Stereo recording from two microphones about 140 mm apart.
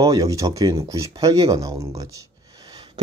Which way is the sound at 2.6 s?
35° right (ahead or behind).